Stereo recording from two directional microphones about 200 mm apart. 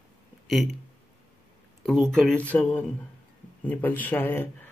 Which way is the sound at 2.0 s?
5° left (ahead or behind).